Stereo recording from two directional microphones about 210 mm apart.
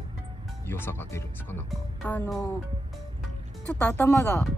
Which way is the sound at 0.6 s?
10° left (ahead or behind).